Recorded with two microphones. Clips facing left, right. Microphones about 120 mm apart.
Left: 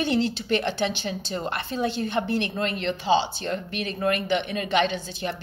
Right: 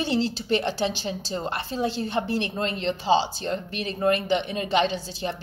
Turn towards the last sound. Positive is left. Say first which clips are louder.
# even
turn(degrees=-30)  # may be behind; listen again after turning